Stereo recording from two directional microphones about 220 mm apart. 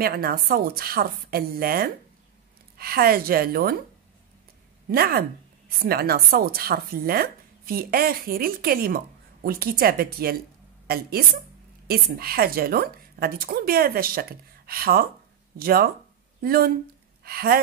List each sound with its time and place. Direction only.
0.0 s speech: 40° right (ahead or behind)
4.9 s speech: 45° right (ahead or behind)